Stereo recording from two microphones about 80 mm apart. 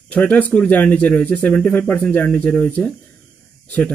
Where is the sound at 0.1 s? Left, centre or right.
Centre.